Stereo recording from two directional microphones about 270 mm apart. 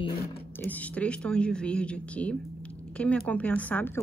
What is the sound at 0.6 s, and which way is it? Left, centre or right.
A woman's voice, centre.